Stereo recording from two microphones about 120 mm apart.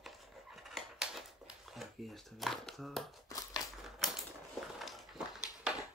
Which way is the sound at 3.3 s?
30° left (ahead or behind).